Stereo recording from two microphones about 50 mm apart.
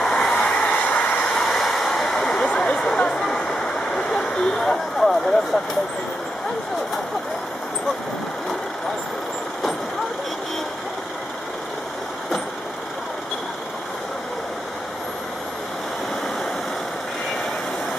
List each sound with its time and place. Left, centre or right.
0.0 s vehicle: centre
0.4 s vehicle: centre
0.8 s vehicle: left
1.3 s vehicle: centre
2.5 s a sound: centre
3.4 s vehicle: centre